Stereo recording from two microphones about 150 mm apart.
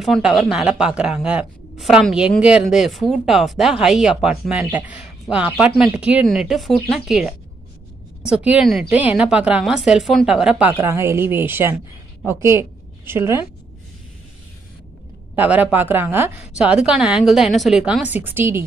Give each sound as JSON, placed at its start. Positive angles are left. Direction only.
{"t": 0.0, "sound": "a woman's voice", "side_deg": 0}
{"t": 10.7, "sound": "a woman's voice", "side_deg": -15}
{"t": 15.3, "sound": "a woman's voice", "side_deg": -10}